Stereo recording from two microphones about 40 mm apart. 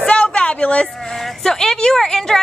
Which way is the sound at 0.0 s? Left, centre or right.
Left.